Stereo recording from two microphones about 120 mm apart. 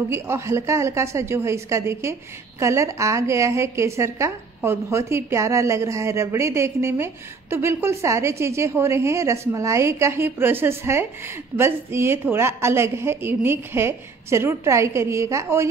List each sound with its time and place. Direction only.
0.1 s a woman's voice: 20° right (ahead or behind)